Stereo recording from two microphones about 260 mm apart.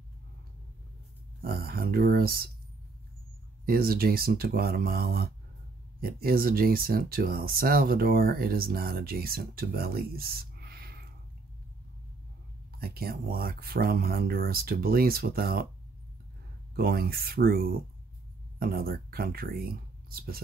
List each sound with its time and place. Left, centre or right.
1.4 s speech: right
3.6 s speech: right
12.7 s speech: right
16.7 s speech: right